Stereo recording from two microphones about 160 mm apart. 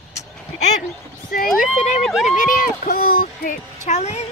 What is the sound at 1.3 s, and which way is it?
Speech, 60° left (ahead or behind).